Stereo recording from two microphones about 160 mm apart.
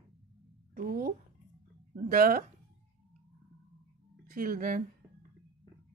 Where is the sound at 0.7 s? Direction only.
65° right (ahead or behind).